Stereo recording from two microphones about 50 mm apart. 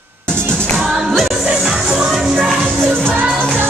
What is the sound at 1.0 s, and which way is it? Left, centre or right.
Music, centre.